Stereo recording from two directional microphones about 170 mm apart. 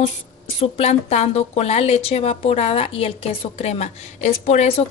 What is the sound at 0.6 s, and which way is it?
A woman's voice, 40° left (ahead or behind).